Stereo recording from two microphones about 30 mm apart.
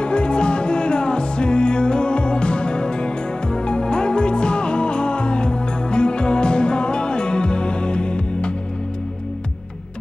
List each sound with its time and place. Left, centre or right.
0.0 s music: left